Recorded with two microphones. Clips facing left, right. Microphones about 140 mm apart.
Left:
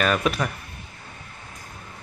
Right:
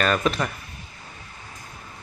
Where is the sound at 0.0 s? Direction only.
5° left (ahead or behind).